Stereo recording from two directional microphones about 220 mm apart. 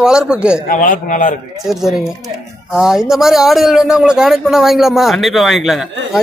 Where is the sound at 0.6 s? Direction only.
35° left (ahead or behind).